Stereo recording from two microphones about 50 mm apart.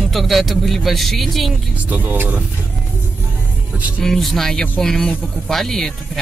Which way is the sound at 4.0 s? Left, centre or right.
Centre.